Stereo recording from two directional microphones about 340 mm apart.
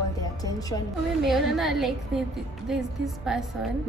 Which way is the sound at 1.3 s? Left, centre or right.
Centre.